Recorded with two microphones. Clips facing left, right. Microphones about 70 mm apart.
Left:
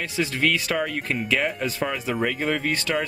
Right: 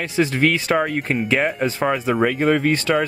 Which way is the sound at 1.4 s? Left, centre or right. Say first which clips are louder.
Right 5 dB; right.